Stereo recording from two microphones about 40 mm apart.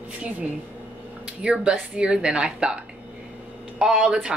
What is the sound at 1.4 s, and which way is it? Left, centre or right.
Speech, right.